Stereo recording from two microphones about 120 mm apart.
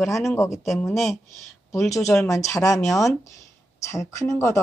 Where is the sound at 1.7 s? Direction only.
25° left (ahead or behind).